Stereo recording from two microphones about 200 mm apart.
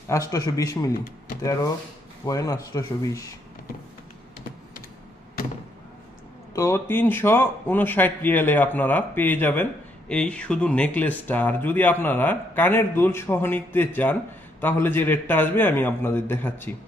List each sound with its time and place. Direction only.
0.1 s speech: 15° left (ahead or behind)
6.5 s speech: 15° left (ahead or behind)